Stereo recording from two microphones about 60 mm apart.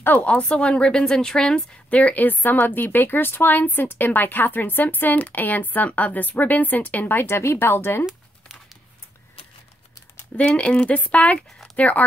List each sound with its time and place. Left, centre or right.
0.2 s speech: left
1.9 s speech: left
10.3 s speech: centre